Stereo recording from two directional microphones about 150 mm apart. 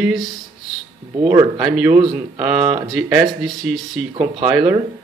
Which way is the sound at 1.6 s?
5° right (ahead or behind).